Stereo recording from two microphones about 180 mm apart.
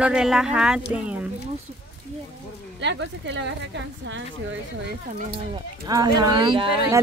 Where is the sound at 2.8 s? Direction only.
80° right.